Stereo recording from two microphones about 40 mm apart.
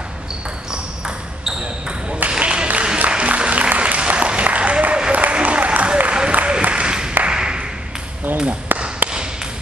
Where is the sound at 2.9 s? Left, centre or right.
Right.